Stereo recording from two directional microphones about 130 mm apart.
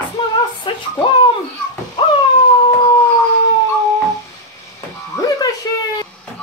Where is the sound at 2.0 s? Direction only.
40° left (ahead or behind).